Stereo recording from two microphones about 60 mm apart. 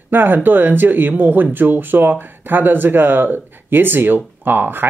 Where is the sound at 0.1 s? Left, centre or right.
Right.